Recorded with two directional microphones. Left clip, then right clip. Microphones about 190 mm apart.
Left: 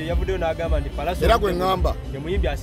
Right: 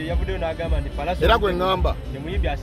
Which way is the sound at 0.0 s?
55° left (ahead or behind).